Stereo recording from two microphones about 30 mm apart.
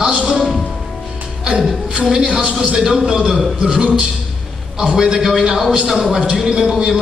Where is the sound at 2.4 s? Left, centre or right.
Right.